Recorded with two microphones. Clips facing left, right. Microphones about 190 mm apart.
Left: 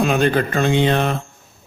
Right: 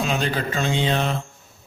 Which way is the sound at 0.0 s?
55° left (ahead or behind).